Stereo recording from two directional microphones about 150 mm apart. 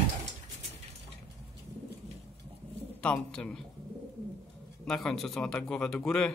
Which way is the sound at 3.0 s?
5° left (ahead or behind).